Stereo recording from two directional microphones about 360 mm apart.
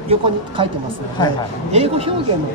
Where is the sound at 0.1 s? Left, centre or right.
Centre.